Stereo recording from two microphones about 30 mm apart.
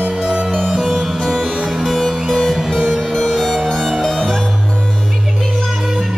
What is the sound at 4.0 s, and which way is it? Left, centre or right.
Music, centre.